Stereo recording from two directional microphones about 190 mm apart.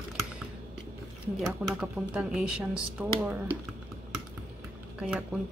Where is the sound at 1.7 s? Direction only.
Centre (ahead or behind).